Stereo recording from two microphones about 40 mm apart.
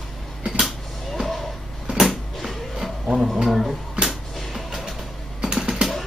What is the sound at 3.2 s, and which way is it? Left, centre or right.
Speech, centre.